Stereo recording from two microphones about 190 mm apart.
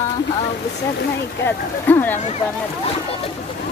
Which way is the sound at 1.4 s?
10° left (ahead or behind).